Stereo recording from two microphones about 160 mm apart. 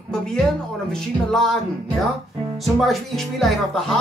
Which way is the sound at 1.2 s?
Centre (ahead or behind).